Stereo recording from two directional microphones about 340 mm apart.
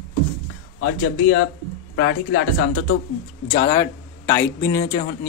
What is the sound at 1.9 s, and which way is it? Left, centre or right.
Speech, left.